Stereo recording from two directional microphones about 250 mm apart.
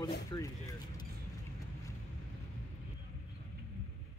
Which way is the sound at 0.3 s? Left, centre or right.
Centre.